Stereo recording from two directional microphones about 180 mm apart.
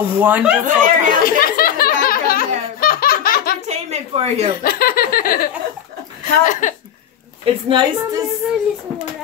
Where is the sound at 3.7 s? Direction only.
35° right (ahead or behind).